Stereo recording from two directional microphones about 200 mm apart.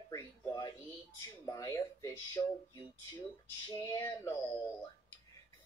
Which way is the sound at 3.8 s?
15° left (ahead or behind).